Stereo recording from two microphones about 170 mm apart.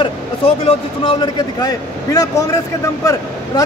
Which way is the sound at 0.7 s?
30° left (ahead or behind).